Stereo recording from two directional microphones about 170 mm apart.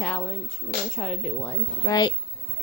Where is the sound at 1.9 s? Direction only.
25° left (ahead or behind).